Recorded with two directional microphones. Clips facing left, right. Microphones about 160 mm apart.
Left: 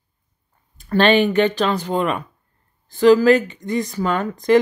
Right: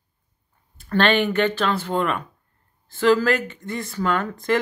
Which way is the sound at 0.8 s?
15° left (ahead or behind).